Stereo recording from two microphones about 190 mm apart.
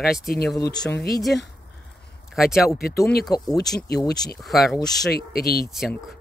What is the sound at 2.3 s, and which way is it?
Speech, centre (ahead or behind).